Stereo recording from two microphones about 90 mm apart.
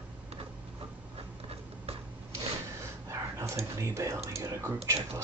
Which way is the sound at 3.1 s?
35° right (ahead or behind).